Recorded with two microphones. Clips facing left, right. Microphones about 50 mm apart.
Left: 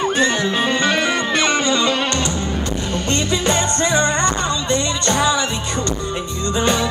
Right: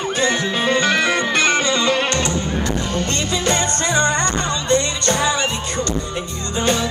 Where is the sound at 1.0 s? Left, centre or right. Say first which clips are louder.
Right 1 dB; right.